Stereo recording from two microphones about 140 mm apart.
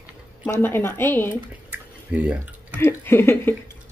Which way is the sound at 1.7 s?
10° right (ahead or behind).